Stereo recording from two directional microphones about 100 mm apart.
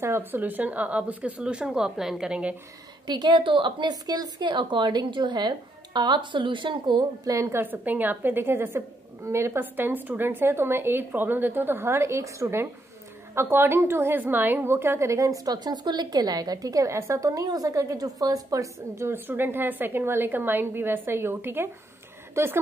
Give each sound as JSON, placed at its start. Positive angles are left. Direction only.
{"t": 0.0, "sound": "speech", "side_deg": -25}
{"t": 3.1, "sound": "a woman's voice", "side_deg": -50}
{"t": 7.2, "sound": "a woman's voice", "side_deg": -30}